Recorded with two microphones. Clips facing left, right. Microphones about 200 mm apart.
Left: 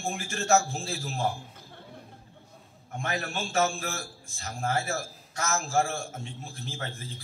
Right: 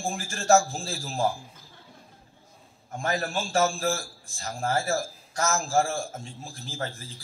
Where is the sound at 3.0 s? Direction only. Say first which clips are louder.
Right 4 dB; 35° right (ahead or behind).